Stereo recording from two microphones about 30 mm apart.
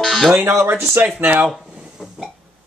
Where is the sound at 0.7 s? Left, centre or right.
Right.